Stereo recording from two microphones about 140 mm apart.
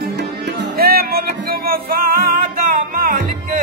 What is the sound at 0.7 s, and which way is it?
Music, 90° right.